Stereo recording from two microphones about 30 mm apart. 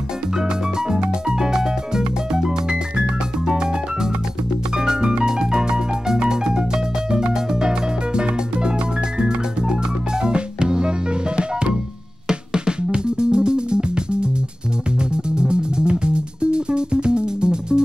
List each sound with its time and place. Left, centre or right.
0.4 s music: right